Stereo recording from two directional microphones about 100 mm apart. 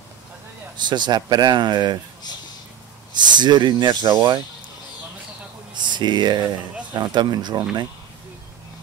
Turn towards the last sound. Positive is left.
turn(degrees=-45)  # may be behind; listen again after turning